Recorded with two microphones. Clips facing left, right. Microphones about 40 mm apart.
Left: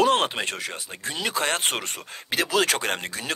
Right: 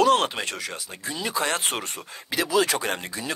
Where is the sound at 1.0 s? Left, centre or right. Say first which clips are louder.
Left 1 dB; left.